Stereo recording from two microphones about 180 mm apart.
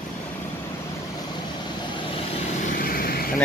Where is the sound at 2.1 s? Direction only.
40° left (ahead or behind).